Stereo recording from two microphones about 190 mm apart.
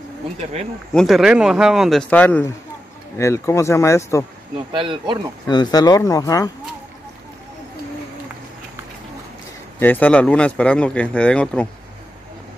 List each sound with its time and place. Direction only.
0.9 s speech: centre (ahead or behind)
4.7 s speech: 25° right (ahead or behind)
5.5 s speech: 20° left (ahead or behind)
9.8 s speech: 10° left (ahead or behind)